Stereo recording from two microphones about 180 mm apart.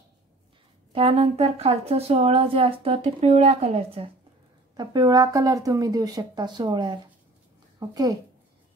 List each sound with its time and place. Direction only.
0.9 s speech: 30° right (ahead or behind)
4.7 s speech: 20° right (ahead or behind)